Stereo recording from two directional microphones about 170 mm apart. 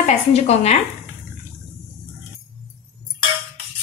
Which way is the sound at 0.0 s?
40° left (ahead or behind).